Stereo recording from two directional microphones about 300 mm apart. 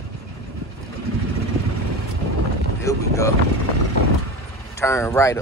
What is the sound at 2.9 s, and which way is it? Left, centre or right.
Speech, centre.